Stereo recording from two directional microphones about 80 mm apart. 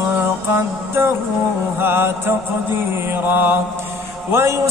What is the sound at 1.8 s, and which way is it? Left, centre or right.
Mantra, right.